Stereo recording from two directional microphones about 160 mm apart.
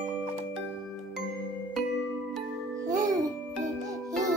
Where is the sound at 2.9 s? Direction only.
20° right (ahead or behind).